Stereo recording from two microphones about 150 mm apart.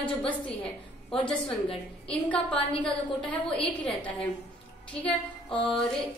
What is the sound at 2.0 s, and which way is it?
A woman's voice, 10° left (ahead or behind).